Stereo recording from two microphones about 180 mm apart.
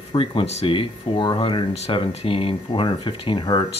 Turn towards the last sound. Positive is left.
turn(degrees=25)  # may be behind; listen again after turning